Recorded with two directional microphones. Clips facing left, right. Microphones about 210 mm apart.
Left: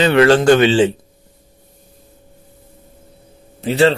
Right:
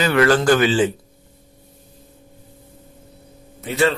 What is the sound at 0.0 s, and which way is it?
Speech, 25° left (ahead or behind).